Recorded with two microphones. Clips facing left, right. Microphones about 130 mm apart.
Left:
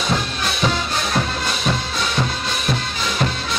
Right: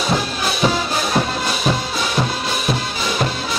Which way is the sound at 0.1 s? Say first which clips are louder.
Right 2 dB; 5° right (ahead or behind).